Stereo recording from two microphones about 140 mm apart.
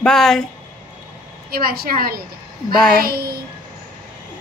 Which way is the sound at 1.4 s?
90° right.